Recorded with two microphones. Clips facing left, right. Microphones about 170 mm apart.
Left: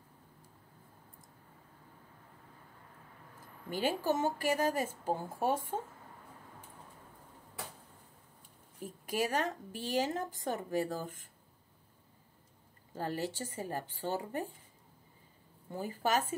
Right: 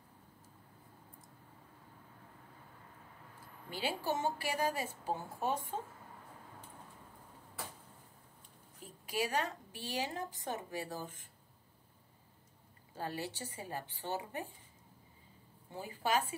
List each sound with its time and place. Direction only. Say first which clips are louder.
3.7 s a woman's voice: left 5 dB; 45° left (ahead or behind)
8.8 s a woman's voice: left 3 dB; 45° left (ahead or behind)
12.9 s a woman's voice: left 4 dB; 45° left (ahead or behind)
15.8 s a woman's voice: left 2 dB; 45° left (ahead or behind)